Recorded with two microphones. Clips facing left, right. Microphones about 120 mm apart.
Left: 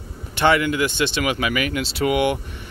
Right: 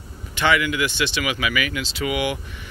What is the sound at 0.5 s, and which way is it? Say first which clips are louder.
Speech: left 2 dB; 40° left (ahead or behind).